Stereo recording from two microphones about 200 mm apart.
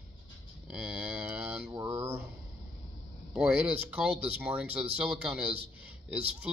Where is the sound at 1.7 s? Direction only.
15° right (ahead or behind).